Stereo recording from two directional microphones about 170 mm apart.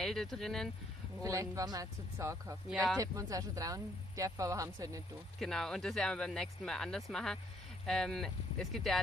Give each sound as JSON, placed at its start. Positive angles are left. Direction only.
{"t": 0.0, "sound": "speech", "side_deg": 0}
{"t": 1.2, "sound": "speech", "side_deg": -20}
{"t": 5.4, "sound": "speech", "side_deg": 0}